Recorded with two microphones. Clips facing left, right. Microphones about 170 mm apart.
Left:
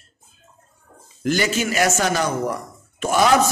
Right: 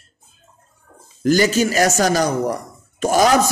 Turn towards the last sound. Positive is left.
turn(degrees=-40)  # may be behind; listen again after turning